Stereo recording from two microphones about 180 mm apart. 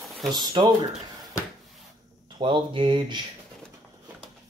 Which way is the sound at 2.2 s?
25° right (ahead or behind).